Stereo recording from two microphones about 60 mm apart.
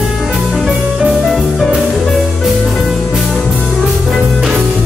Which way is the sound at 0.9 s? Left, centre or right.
Centre.